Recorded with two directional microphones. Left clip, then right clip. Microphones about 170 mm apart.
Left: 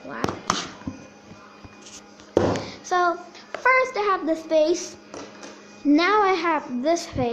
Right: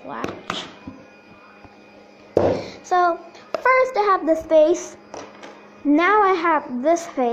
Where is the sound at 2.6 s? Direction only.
5° right (ahead or behind).